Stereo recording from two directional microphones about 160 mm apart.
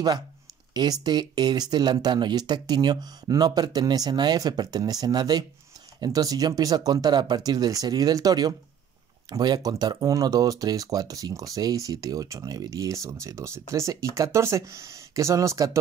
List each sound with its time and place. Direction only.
1.0 s speech: 25° right (ahead or behind)